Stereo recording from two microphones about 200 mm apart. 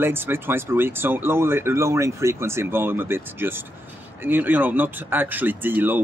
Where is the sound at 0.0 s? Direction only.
10° right (ahead or behind).